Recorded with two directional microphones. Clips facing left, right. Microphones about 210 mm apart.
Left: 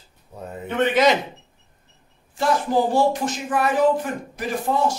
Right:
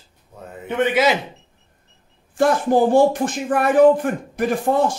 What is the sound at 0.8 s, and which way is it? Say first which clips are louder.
Speech: even; 5° right (ahead or behind).